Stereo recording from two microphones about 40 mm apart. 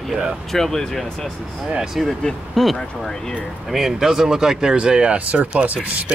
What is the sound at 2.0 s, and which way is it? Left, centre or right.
Speech, centre.